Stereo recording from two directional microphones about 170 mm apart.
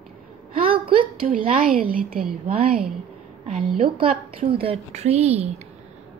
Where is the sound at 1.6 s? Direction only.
55° right (ahead or behind).